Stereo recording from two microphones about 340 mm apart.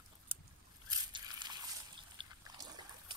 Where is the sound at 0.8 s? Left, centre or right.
Centre.